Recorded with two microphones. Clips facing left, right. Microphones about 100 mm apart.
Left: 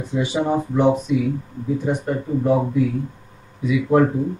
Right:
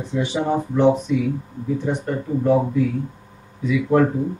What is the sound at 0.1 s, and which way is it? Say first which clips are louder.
Speech: left 1 dB; 10° left (ahead or behind).